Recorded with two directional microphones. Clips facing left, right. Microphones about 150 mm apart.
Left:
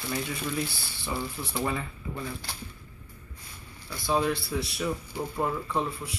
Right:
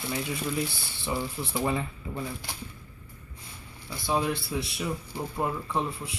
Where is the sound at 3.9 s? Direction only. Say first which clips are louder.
Left 1 dB; 20° right (ahead or behind).